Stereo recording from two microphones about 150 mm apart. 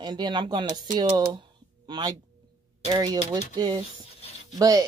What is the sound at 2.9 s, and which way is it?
Speech, 25° right (ahead or behind).